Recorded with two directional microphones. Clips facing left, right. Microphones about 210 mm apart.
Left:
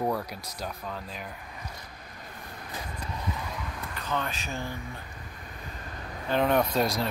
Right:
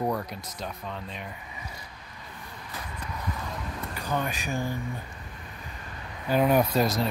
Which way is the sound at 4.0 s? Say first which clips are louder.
Right 2 dB; 15° right (ahead or behind).